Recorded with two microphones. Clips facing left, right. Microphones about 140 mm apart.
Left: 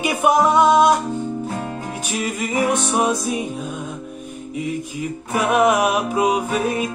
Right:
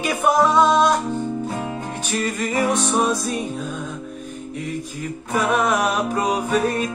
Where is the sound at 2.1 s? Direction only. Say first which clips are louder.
Even; 10° left (ahead or behind).